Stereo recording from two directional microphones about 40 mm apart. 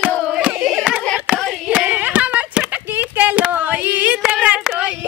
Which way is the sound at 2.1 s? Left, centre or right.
Right.